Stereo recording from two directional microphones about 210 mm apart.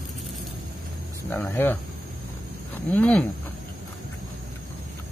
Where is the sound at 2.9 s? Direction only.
10° left (ahead or behind).